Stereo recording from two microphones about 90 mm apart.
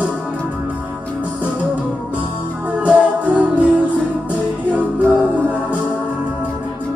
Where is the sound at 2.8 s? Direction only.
15° right (ahead or behind).